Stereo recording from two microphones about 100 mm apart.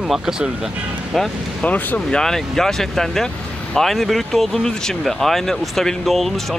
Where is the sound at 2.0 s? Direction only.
5° left (ahead or behind).